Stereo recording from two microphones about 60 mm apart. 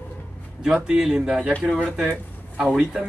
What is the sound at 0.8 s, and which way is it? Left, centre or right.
Speech, centre.